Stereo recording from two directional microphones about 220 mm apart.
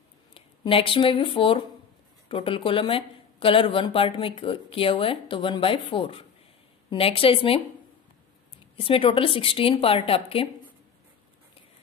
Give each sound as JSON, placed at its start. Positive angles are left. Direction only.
{"t": 0.3, "sound": "speech", "side_deg": 25}
{"t": 8.7, "sound": "speech", "side_deg": 25}